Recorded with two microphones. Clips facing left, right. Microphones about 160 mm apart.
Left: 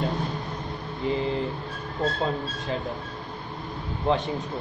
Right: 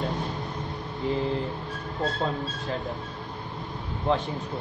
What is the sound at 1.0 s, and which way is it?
Speech, centre (ahead or behind).